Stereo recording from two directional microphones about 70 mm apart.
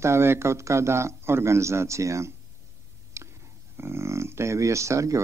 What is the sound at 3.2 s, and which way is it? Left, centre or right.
Whispering, right.